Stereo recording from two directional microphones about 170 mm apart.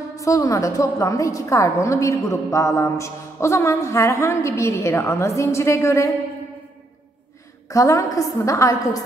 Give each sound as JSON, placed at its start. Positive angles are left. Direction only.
{"t": 0.1, "sound": "a woman's voice", "side_deg": 20}
{"t": 7.7, "sound": "a woman's voice", "side_deg": 20}